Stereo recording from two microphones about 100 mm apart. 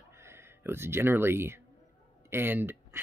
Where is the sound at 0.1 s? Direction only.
25° right (ahead or behind).